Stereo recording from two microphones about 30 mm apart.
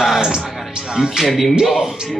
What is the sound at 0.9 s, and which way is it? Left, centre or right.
Speech, right.